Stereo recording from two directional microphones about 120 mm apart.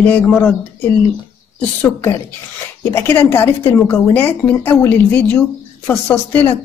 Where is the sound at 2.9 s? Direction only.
20° left (ahead or behind).